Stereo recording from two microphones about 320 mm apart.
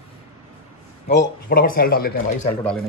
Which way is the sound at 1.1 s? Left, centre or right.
Left.